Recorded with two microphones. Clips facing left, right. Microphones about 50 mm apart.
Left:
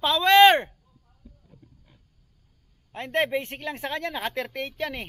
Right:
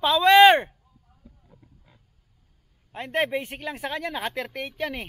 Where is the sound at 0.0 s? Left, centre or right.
Centre.